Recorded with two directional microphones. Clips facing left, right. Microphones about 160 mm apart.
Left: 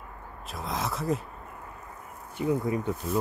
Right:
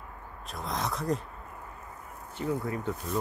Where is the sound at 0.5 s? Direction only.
Centre (ahead or behind).